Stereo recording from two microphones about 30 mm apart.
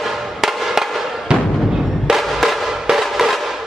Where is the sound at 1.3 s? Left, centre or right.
Right.